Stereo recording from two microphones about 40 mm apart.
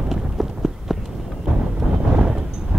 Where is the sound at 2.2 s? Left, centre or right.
Centre.